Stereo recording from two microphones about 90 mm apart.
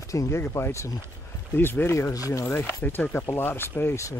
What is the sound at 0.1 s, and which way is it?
Speech, 35° left (ahead or behind).